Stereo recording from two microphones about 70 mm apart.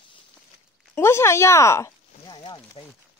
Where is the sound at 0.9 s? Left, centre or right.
Left.